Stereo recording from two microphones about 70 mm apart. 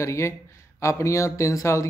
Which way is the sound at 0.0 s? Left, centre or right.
Left.